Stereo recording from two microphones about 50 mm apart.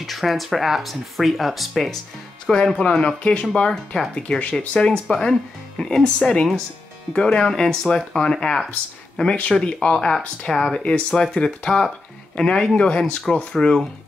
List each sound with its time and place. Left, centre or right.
0.0 s speech: centre
2.4 s speech: centre